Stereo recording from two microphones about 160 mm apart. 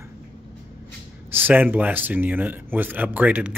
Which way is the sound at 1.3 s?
10° right (ahead or behind).